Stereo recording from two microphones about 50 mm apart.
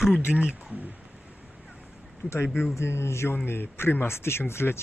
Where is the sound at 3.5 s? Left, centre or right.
Left.